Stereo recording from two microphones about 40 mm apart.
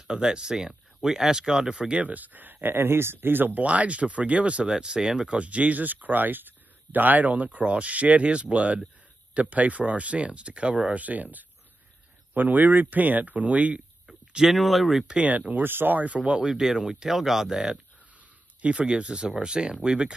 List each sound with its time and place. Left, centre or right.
0.0 s speech: centre
2.0 s speech: right
3.5 s speech: right
4.6 s speech: centre; by 13.8 s right
14.0 s a sound: centre
14.6 s speech: centre
15.2 s speech: right
15.5 s speech: right
16.2 s speech: right
16.4 s speech: centre
18.6 s speech: right